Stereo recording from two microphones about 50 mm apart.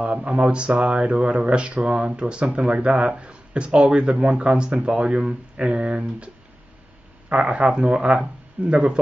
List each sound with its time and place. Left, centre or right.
0.0 s speech: right
7.3 s speech: right